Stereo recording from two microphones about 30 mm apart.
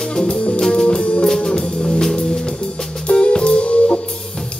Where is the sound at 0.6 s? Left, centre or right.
Left.